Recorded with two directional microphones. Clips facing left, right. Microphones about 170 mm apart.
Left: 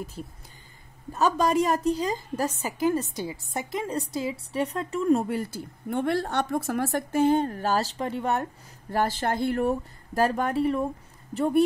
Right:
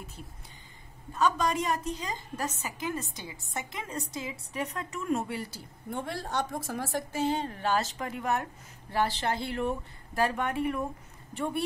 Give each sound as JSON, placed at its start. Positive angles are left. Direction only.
{"t": 1.1, "sound": "a woman's voice", "side_deg": 40}
{"t": 5.9, "sound": "a woman's voice", "side_deg": 65}
{"t": 8.9, "sound": "a woman's voice", "side_deg": 45}